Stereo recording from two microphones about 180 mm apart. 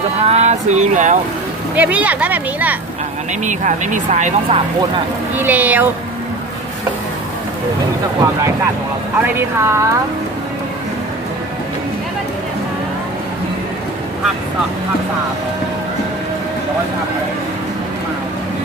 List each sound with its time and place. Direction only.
0.2 s a sound: 35° right (ahead or behind)
1.8 s speech: 10° right (ahead or behind)
3.4 s speech: 45° right (ahead or behind)
5.3 s speech: 10° right (ahead or behind)
9.2 s speech: 15° right (ahead or behind)